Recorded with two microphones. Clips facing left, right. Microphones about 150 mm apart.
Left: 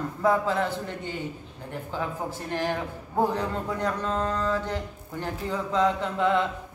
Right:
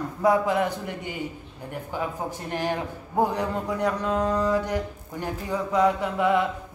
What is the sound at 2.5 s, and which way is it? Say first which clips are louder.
Speech: right 1 dB; 15° right (ahead or behind).